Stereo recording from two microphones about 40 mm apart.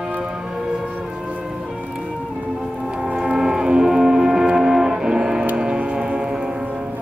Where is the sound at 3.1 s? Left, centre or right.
Centre.